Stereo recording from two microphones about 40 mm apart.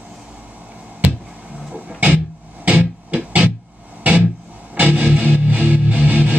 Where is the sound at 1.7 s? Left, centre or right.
Right.